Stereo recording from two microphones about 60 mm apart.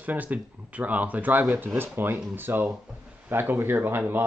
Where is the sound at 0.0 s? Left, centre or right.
Right.